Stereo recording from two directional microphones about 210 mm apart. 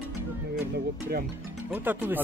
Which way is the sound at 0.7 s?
50° right (ahead or behind).